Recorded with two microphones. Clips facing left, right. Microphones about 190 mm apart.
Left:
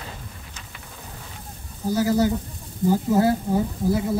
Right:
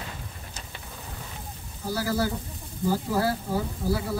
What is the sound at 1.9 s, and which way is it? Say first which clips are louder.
A woman's voice: left 7 dB; 20° left (ahead or behind).